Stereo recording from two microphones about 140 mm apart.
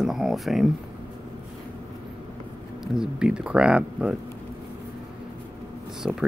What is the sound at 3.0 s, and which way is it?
Speech, 5° right (ahead or behind).